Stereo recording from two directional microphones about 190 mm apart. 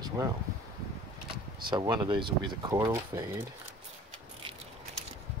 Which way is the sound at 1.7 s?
20° right (ahead or behind).